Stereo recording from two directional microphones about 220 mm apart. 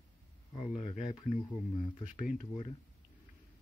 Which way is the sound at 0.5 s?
30° left (ahead or behind).